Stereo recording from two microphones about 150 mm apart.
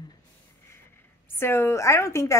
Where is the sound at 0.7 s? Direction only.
15° left (ahead or behind).